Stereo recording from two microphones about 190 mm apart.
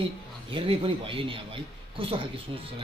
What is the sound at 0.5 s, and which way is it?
A man's voice, 30° right (ahead or behind).